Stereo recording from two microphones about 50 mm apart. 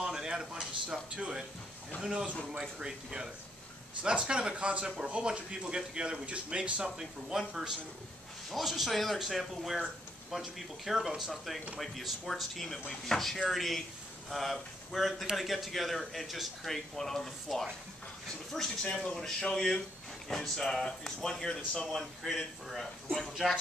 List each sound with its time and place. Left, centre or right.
0.0 s a sound: centre
1.1 s speech: centre
6.8 s a man's voice: centre